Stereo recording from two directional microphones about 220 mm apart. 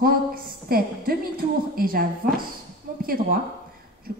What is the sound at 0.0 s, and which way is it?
A woman's voice, 40° right (ahead or behind).